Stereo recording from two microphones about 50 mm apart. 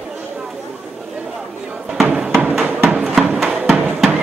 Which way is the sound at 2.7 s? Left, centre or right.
Right.